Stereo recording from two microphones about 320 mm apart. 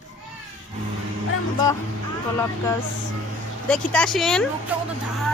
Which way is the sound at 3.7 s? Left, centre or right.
Centre.